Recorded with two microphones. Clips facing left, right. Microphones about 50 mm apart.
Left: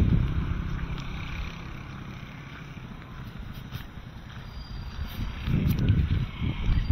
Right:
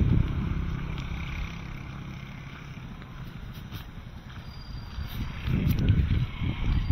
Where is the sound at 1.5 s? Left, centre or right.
Centre.